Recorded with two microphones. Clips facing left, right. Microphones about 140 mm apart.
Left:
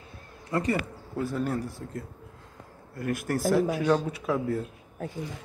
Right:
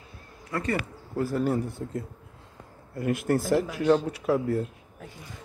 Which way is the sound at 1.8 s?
20° right (ahead or behind).